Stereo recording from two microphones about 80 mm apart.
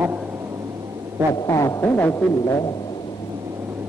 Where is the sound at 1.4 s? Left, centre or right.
Left.